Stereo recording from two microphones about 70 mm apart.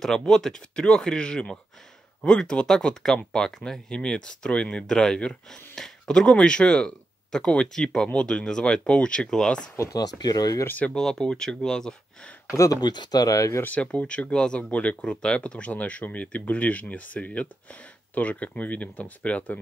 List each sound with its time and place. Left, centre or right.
0.3 s speech: centre
9.9 s speech: left
10.8 s speech: centre
12.8 s speech: left
13.7 s speech: centre